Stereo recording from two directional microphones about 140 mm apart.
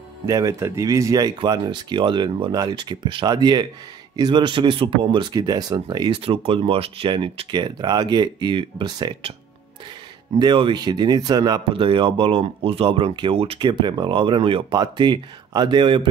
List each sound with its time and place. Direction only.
0.3 s speech: 25° right (ahead or behind)
10.4 s speech: 35° right (ahead or behind)